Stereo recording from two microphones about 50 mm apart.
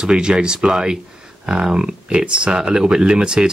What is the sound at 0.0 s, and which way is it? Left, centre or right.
Speech, centre.